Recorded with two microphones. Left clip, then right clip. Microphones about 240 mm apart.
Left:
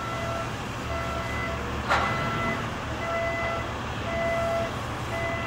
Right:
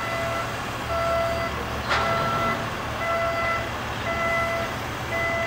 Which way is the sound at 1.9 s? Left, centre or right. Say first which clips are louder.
Even; left.